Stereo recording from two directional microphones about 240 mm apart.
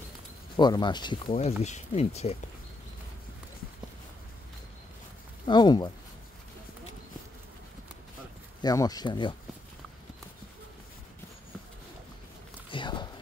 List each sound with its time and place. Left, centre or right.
0.6 s speech: centre
5.5 s speech: centre
8.6 s speech: centre
12.6 s a sound: centre